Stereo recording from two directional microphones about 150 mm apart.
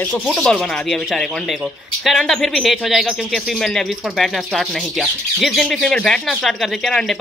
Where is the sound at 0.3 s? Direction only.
5° left (ahead or behind).